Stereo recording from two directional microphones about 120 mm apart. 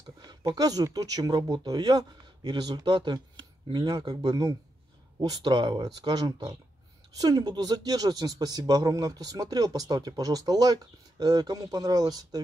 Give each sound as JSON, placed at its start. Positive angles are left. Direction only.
{"t": 0.2, "sound": "speech", "side_deg": -30}